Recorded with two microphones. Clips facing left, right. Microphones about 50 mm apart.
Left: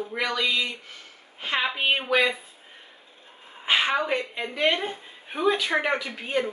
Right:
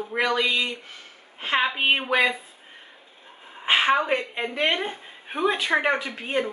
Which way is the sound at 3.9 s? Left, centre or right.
Centre.